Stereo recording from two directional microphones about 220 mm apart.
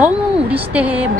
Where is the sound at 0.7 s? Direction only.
5° right (ahead or behind).